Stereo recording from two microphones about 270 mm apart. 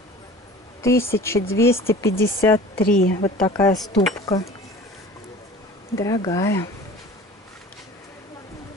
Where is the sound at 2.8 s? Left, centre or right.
Left.